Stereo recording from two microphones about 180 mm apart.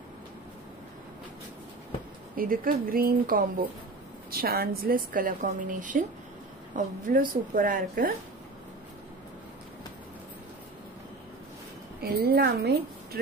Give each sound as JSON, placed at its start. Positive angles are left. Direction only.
{"t": 2.3, "sound": "a woman's voice", "side_deg": -50}
{"t": 12.0, "sound": "a woman's voice", "side_deg": -60}